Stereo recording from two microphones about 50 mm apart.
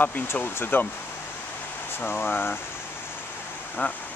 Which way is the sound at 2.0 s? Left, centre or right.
Left.